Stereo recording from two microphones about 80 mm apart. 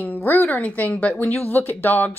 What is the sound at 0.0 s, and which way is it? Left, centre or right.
A woman's voice, left.